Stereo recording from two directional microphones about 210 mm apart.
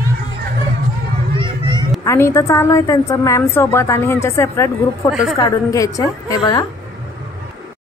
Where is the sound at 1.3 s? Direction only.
25° right (ahead or behind).